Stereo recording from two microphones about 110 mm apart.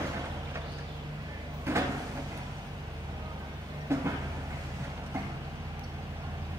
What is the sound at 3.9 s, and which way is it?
Vehicle, 25° right (ahead or behind).